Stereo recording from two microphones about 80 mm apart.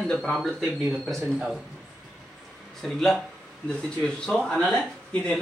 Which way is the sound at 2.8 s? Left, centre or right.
Centre.